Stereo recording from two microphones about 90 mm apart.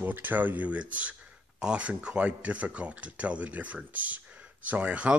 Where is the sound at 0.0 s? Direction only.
20° right (ahead or behind).